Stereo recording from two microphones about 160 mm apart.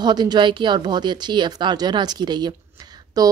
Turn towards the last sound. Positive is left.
turn(degrees=-25)  # may be behind; listen again after turning